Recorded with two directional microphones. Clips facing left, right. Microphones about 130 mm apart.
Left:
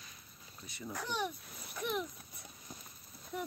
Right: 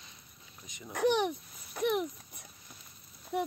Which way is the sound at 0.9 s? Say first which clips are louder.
Right 10 dB; 70° right (ahead or behind).